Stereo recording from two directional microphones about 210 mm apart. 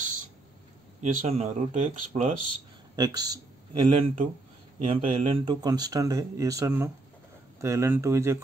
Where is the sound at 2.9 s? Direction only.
20° right (ahead or behind).